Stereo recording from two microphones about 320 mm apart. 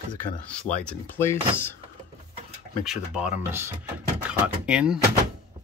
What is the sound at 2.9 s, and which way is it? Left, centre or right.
Speech, centre.